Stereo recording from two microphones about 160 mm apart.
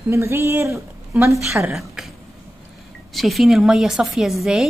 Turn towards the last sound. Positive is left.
turn(degrees=0)  # may be behind; listen again after turning